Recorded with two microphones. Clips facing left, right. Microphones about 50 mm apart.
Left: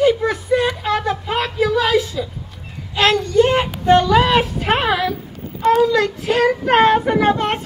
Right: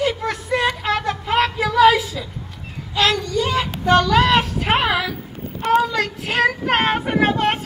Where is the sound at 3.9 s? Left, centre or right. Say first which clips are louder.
Left 2 dB; centre.